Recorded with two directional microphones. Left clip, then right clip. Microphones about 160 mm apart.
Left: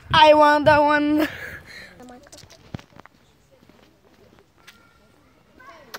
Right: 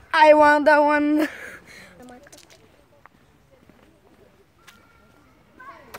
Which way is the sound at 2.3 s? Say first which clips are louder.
Left 3 dB; 60° left (ahead or behind).